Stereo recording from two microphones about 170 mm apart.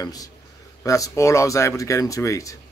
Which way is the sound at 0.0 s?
20° left (ahead or behind).